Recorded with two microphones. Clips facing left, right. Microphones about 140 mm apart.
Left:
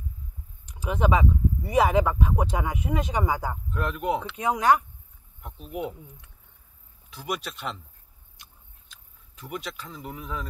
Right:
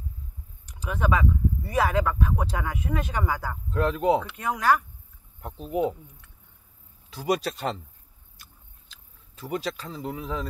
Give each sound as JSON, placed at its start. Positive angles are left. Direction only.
{"t": 0.7, "sound": "speech", "side_deg": 20}
{"t": 3.7, "sound": "speech", "side_deg": -35}
{"t": 4.4, "sound": "speech", "side_deg": 20}
{"t": 5.4, "sound": "speech", "side_deg": -35}
{"t": 7.2, "sound": "speech", "side_deg": -40}
{"t": 9.4, "sound": "speech", "side_deg": -35}